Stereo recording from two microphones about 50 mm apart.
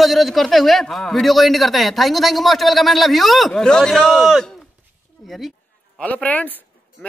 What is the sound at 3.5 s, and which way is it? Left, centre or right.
Speech, centre.